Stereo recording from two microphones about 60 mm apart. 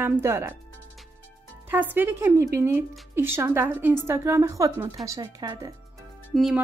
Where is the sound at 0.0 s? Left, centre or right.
Right.